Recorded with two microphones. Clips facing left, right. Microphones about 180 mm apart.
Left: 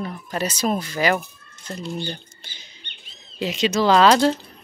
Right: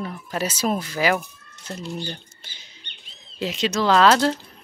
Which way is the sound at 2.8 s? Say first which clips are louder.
Left 1 dB; 35° right (ahead or behind).